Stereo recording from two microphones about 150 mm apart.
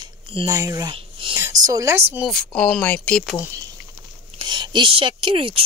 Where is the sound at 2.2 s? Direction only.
5° left (ahead or behind).